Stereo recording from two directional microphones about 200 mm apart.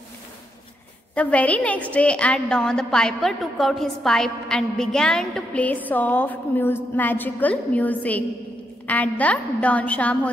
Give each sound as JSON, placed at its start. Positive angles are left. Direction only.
{"t": 1.1, "sound": "a woman's voice", "side_deg": 5}